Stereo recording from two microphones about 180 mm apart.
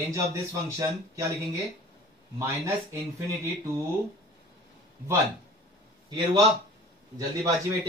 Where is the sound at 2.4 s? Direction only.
15° right (ahead or behind).